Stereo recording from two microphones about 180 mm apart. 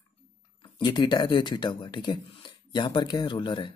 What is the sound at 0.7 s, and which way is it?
Speech, 25° left (ahead or behind).